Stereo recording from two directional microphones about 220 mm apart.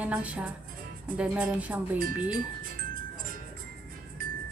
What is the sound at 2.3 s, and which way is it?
Music, 40° right (ahead or behind).